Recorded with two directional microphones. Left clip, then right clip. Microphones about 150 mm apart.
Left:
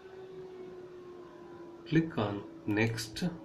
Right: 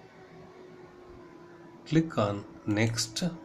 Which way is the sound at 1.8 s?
40° right (ahead or behind).